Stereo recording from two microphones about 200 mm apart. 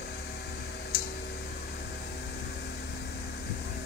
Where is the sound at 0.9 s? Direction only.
50° left (ahead or behind).